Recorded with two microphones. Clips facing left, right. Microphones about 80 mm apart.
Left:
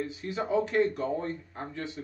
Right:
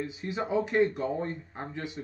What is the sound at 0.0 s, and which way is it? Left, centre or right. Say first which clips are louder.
Speech: even; centre.